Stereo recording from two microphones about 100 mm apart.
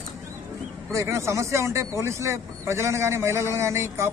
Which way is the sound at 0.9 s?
30° right (ahead or behind).